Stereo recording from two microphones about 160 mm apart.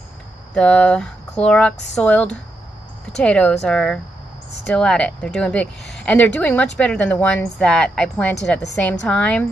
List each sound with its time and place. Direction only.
0.6 s speech: 5° left (ahead or behind)